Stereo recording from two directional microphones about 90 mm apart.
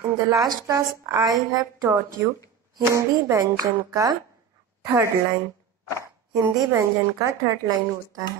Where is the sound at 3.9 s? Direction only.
45° right (ahead or behind).